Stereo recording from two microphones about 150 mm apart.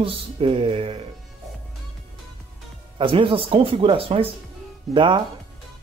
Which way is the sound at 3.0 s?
35° right (ahead or behind).